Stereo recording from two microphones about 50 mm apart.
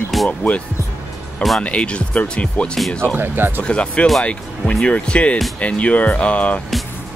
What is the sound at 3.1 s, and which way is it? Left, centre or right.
Speech, right.